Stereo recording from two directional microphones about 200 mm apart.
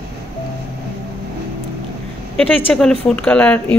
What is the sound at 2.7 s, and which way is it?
Speech, centre (ahead or behind).